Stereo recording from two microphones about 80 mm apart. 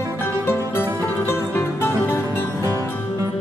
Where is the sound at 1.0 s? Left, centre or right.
Left.